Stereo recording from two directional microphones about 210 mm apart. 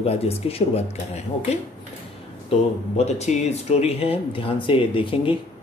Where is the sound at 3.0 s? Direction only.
30° left (ahead or behind).